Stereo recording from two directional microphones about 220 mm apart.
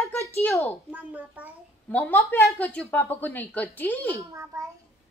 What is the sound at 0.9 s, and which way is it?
Speech, 5° right (ahead or behind).